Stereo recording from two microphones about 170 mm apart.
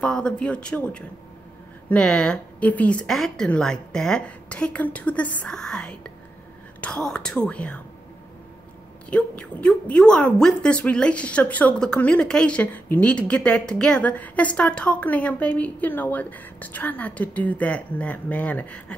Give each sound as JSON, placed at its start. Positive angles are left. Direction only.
{"t": 0.0, "sound": "a woman's voice", "side_deg": 5}
{"t": 9.1, "sound": "a woman's voice", "side_deg": 5}